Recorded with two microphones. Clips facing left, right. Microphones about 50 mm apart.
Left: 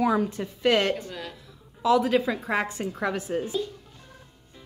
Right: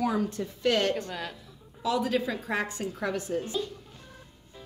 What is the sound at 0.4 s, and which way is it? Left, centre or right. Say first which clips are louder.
Speech: left 1 dB; left.